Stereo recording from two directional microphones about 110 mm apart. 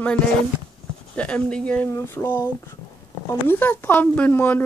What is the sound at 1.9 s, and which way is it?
Speech, 20° left (ahead or behind).